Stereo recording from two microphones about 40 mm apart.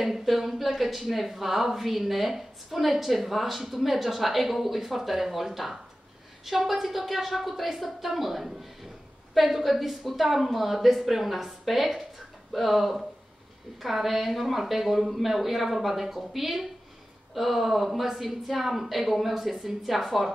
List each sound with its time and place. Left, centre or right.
0.0 s speech: centre